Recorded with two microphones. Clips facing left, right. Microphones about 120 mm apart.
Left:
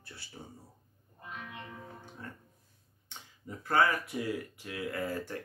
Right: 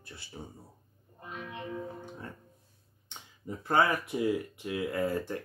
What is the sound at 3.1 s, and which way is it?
Speech, 25° right (ahead or behind).